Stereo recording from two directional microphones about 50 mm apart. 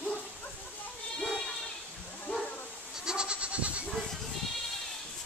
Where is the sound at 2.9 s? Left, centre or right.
Centre.